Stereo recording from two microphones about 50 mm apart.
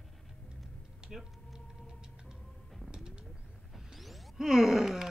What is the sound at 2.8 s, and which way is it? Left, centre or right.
Bird, centre.